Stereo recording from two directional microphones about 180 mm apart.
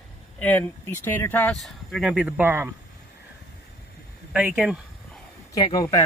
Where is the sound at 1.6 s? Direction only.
Centre (ahead or behind).